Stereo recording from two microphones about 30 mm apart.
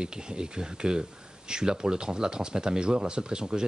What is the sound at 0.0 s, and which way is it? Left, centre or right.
Speech, right.